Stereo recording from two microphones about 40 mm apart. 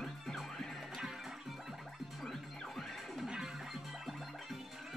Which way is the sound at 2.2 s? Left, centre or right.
Centre.